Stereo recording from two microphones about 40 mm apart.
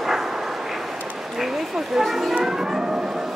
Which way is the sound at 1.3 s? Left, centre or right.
Centre.